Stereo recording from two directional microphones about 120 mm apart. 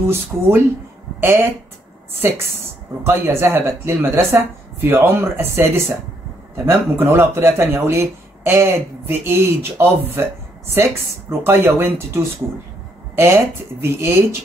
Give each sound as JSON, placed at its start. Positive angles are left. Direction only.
{"t": 0.0, "sound": "speech", "side_deg": -20}